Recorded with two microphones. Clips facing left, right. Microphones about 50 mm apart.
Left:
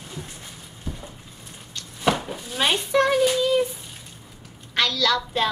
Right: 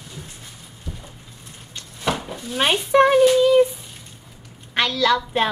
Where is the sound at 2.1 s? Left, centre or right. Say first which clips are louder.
Even; centre.